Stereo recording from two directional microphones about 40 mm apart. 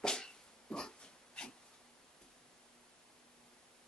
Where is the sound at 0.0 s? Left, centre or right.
Centre.